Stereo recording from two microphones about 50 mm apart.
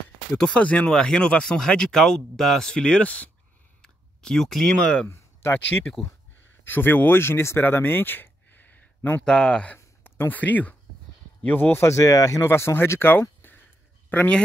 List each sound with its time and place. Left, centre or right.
0.4 s speech: left
2.7 s speech: left
3.8 s a sound: centre
5.0 s a sound: left
5.9 s speech: left
6.6 s speech: left
9.2 s speech: centre
10.0 s a sound: left
10.3 s speech: left
11.4 s speech: left
11.8 s speech: left
12.4 s speech: left
13.4 s a sound: left
14.1 s speech: left